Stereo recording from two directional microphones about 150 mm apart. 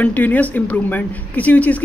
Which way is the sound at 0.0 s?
10° left (ahead or behind).